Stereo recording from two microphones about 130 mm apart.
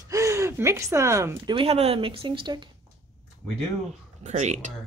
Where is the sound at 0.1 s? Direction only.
25° right (ahead or behind).